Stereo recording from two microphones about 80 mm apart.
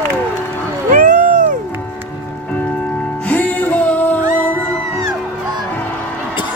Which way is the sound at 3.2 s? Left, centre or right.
Centre.